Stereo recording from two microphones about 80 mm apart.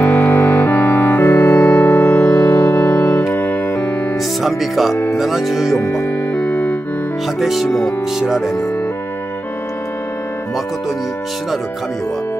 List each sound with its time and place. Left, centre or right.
0.0 s music: left
4.4 s music: centre
5.1 s speech: centre
5.8 s speech: left
6.3 s music: centre
7.3 s speech: centre